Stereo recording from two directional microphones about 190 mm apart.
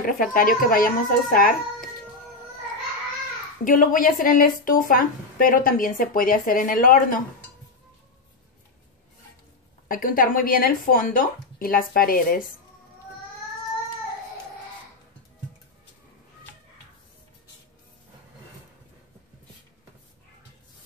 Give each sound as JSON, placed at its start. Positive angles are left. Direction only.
{"t": 0.0, "sound": "speech", "side_deg": 45}
{"t": 3.6, "sound": "speech", "side_deg": 45}
{"t": 9.8, "sound": "speech", "side_deg": 45}